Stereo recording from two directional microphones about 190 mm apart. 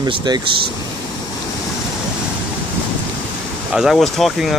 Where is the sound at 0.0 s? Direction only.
20° right (ahead or behind).